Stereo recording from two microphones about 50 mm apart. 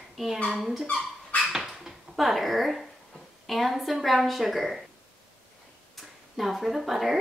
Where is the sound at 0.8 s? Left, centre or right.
Left.